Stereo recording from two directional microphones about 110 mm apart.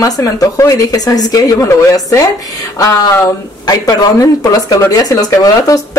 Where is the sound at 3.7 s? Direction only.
35° left (ahead or behind).